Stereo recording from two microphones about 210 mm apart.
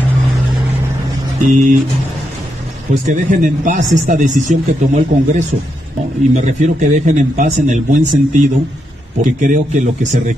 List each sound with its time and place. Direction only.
1.4 s speech: 40° right (ahead or behind)
2.9 s speech: 35° right (ahead or behind)